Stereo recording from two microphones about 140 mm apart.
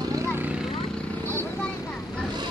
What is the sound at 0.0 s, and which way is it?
Vehicle, 20° right (ahead or behind).